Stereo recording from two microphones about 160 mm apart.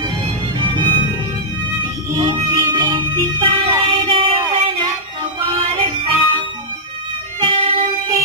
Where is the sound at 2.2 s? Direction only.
30° right (ahead or behind).